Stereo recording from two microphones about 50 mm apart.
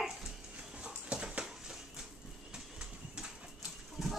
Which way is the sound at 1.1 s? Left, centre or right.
Right.